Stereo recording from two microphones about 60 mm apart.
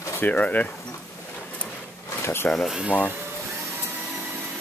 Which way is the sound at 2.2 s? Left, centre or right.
Left.